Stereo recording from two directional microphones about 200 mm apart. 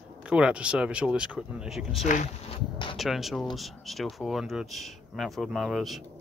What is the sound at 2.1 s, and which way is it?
Speech, 35° left (ahead or behind).